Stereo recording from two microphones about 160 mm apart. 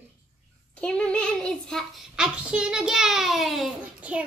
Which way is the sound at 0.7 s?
5° left (ahead or behind).